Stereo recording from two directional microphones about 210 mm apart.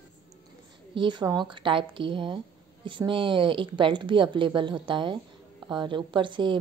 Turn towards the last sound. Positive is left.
turn(degrees=-25)  # may be behind; listen again after turning